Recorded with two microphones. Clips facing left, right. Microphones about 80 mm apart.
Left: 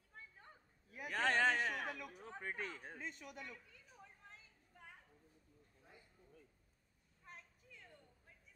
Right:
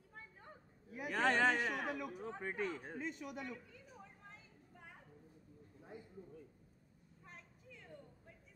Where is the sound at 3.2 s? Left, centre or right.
Right.